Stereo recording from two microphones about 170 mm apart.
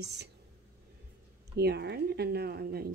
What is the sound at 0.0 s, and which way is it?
Speech, 80° right.